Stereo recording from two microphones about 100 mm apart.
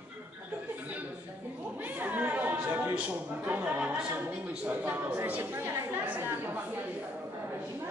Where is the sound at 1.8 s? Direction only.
15° right (ahead or behind).